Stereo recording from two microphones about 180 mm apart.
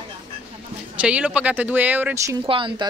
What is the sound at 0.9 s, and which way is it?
Speech, 5° right (ahead or behind).